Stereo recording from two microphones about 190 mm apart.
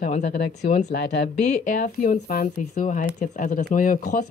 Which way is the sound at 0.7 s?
45° left (ahead or behind).